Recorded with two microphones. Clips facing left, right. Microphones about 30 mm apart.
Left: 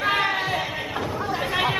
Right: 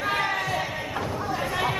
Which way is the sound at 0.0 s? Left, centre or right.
Left.